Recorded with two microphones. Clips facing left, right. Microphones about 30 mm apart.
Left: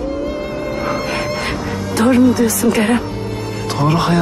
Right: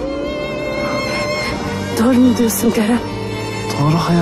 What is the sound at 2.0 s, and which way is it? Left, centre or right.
Speech, centre.